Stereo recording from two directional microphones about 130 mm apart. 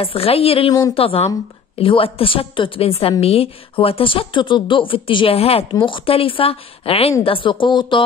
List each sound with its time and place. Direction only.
0.0 s a woman's voice: 45° left (ahead or behind)
0.7 s speech: 25° left (ahead or behind)
0.9 s a woman's voice: 50° left (ahead or behind)